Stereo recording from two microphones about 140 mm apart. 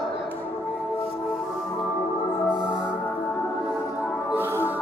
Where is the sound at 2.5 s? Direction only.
5° right (ahead or behind).